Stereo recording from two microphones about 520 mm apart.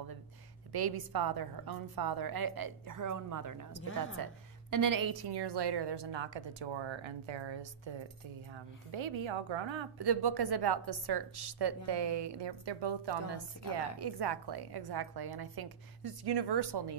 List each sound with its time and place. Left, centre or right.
0.7 s a woman's voice: right
3.8 s a woman's voice: left
4.2 s a woman's voice: right